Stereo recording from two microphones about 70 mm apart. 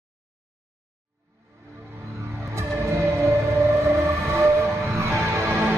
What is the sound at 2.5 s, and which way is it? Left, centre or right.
Train, right.